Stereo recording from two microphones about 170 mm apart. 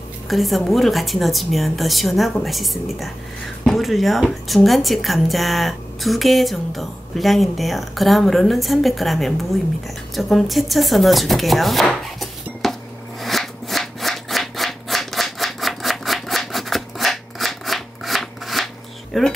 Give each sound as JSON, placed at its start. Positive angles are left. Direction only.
{"t": 0.3, "sound": "a woman's voice", "side_deg": 0}
{"t": 10.1, "sound": "chopping", "side_deg": 0}
{"t": 13.2, "sound": "rub", "side_deg": 0}
{"t": 19.1, "sound": "speech", "side_deg": 0}